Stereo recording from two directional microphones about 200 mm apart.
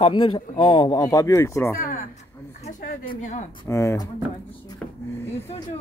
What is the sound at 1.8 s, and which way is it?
Speech, 45° left (ahead or behind).